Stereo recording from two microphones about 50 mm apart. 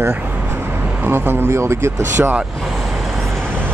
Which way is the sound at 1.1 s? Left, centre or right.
Right.